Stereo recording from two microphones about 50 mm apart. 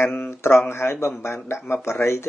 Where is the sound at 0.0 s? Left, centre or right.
Left.